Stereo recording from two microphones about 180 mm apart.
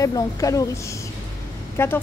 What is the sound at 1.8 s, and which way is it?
Speech, 15° left (ahead or behind).